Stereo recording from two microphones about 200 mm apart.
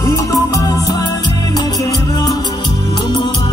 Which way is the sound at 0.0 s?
15° left (ahead or behind).